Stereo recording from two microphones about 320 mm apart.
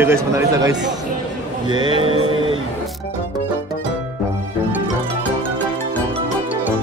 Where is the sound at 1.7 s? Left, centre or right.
Centre.